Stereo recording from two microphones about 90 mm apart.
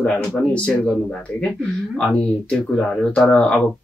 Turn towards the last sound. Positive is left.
turn(degrees=15)  # may be behind; listen again after turning